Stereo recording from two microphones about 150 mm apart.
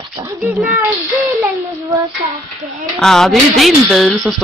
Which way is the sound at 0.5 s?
15° right (ahead or behind).